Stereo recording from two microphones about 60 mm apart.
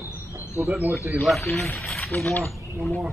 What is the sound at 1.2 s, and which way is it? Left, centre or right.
Speech, centre.